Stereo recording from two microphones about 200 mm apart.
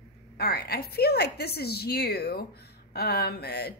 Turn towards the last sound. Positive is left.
turn(degrees=55)  # may be behind; listen again after turning